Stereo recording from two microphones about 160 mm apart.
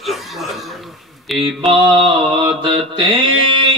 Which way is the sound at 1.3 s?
Centre (ahead or behind).